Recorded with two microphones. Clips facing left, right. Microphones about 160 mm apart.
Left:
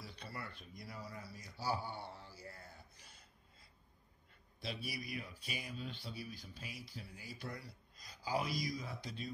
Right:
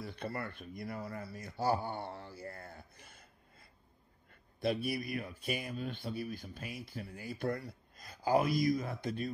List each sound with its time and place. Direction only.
0.0 s speech: 55° right (ahead or behind)